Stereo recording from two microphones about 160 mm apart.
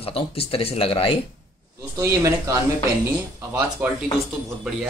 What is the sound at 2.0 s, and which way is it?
Speech, 15° right (ahead or behind).